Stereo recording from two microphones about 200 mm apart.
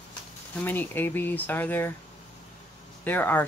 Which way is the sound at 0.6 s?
10° left (ahead or behind).